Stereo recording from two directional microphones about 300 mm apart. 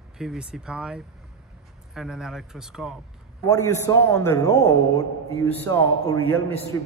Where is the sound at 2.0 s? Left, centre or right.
Centre.